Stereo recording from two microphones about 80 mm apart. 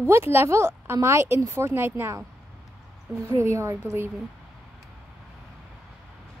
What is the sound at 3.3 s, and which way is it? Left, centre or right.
Speech, right.